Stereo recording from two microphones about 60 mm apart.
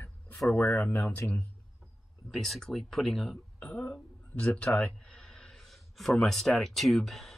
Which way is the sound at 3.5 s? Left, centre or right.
Left.